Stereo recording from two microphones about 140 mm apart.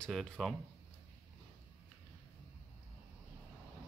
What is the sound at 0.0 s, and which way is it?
Speech, centre (ahead or behind).